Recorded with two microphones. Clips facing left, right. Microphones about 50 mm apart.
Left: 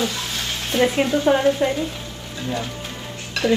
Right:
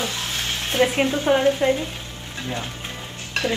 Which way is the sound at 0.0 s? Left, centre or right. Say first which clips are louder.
Left 2 dB; right.